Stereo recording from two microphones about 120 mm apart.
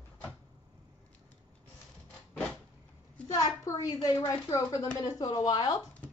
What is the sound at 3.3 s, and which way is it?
A woman's voice, 35° left (ahead or behind).